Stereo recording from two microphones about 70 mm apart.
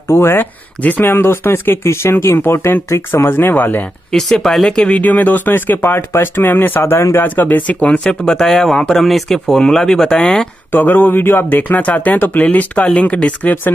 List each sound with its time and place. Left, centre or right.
0.1 s speech: left
4.1 s speech: centre; by 7.0 s left
7.0 s speech: left
7.2 s speech: left
8.2 s speech: centre
10.7 s speech: left